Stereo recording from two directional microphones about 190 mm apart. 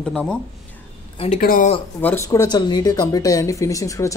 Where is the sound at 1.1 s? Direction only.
30° left (ahead or behind).